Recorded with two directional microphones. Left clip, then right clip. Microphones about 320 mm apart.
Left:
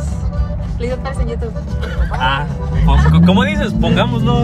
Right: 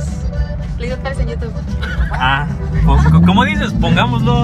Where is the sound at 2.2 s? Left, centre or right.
Centre.